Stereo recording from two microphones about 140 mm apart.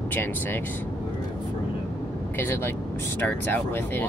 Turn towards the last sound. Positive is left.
turn(degrees=15)  # may be behind; listen again after turning